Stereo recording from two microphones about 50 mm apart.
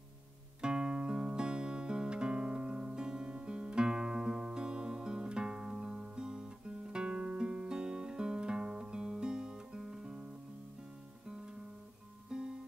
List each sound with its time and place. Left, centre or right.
0.6 s music: centre
6.9 s guitar: centre
12.3 s music: centre